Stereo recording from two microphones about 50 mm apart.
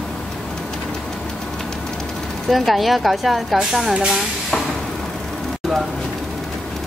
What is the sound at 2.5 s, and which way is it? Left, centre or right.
A woman's voice, centre.